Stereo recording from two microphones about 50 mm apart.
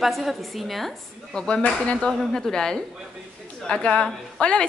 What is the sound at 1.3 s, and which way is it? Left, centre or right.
A woman's voice, centre.